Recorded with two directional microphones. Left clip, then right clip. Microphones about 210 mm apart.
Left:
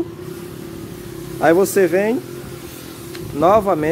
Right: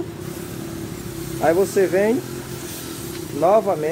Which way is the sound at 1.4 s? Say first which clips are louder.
Left 4 dB; 45° left (ahead or behind).